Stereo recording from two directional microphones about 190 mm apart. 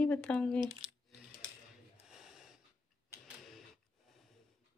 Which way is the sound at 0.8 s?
30° right (ahead or behind).